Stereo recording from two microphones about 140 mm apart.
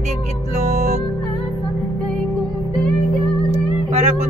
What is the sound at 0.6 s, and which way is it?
Music, 55° right (ahead or behind).